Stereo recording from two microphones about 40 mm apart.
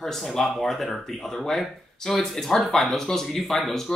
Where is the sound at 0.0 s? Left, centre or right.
Centre.